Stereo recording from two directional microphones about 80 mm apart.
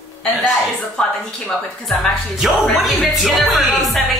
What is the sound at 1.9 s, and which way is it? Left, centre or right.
Music, centre.